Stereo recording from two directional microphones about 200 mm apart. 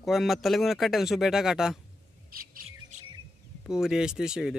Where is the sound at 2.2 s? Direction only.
45° right (ahead or behind).